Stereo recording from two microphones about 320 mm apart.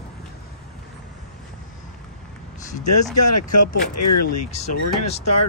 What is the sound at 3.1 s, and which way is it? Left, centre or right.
Speech, left.